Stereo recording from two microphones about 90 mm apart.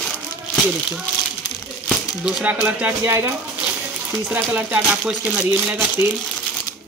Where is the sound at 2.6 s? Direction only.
15° right (ahead or behind).